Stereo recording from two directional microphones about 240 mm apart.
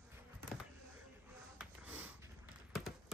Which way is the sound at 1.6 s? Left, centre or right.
Centre.